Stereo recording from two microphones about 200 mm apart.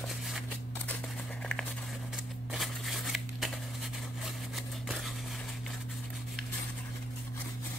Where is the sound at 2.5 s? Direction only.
Centre (ahead or behind).